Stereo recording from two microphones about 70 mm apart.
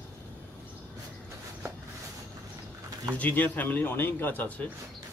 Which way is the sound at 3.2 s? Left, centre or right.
Left.